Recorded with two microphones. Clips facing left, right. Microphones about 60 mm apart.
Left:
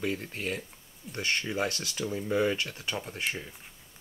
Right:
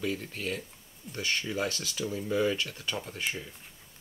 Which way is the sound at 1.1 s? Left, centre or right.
Left.